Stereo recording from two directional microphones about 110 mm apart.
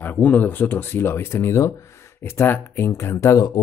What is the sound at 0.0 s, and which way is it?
Speech, 15° left (ahead or behind).